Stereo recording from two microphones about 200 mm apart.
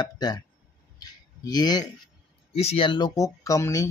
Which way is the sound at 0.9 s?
20° left (ahead or behind).